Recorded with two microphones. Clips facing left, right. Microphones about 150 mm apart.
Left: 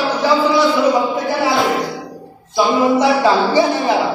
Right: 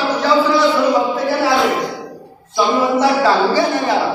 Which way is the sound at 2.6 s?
15° left (ahead or behind).